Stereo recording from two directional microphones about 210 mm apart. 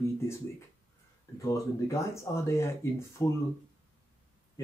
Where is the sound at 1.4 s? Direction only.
15° left (ahead or behind).